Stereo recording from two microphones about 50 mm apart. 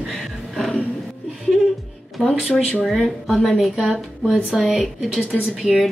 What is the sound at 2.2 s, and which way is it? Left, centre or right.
A woman's voice, centre.